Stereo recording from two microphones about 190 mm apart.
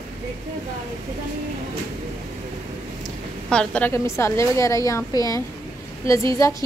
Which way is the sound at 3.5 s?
5° left (ahead or behind).